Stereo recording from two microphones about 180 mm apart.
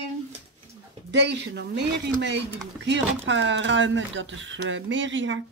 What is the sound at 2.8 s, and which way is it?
Speech, 80° right.